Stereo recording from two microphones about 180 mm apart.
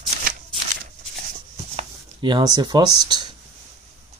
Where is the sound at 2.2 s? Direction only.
20° right (ahead or behind).